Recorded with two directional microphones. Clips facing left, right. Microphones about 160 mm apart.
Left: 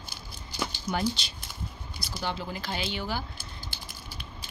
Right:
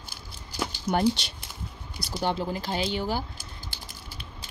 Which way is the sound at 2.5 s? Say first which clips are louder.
Right 5 dB; 35° right (ahead or behind).